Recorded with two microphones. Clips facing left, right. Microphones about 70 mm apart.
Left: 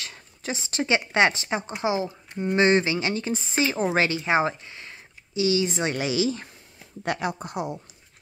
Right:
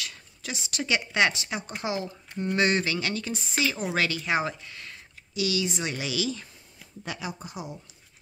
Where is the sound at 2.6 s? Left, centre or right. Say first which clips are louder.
Left 5 dB; left.